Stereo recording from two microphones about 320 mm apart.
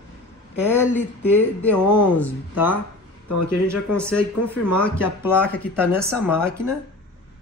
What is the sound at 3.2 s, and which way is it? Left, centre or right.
Speech, left.